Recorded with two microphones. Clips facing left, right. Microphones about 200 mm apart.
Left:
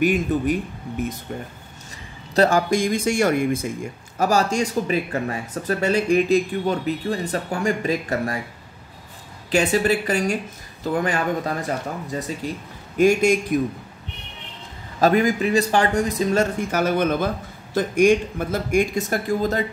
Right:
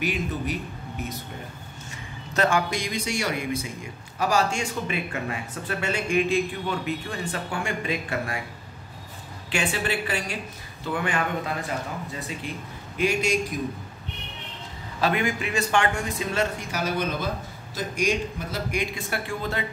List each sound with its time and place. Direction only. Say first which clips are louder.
0.0 s speech: left 8 dB; 50° left (ahead or behind)
2.3 s speech: left 6 dB; 40° left (ahead or behind)
9.5 s speech: left 8 dB; 40° left (ahead or behind)
15.0 s speech: left 7 dB; 40° left (ahead or behind)